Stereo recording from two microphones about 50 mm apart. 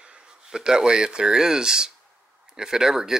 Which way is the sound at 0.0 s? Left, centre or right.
Centre.